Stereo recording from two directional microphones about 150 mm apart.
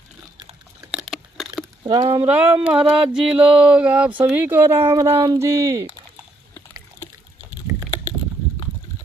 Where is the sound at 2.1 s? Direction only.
15° right (ahead or behind).